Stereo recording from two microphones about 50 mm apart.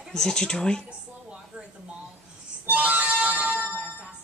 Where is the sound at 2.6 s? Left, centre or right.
Right.